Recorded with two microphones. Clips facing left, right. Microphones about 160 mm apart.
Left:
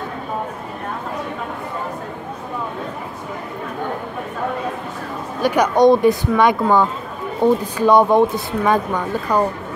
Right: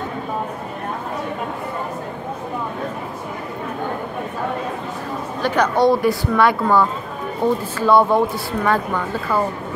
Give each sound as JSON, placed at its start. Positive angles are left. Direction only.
{"t": 5.4, "sound": "speech", "side_deg": 10}